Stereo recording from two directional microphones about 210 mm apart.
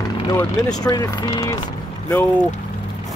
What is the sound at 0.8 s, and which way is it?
Speech, 20° left (ahead or behind).